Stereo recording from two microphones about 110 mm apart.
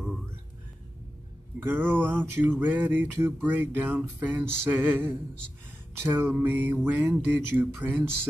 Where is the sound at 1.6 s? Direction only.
20° right (ahead or behind).